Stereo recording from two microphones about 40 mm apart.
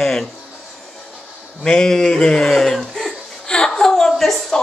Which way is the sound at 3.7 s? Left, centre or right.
Centre.